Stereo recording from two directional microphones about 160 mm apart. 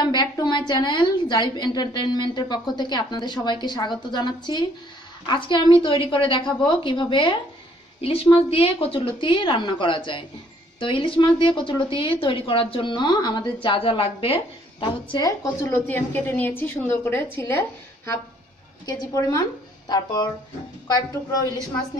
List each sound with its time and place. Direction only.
0.0 s a woman's voice: 25° left (ahead or behind)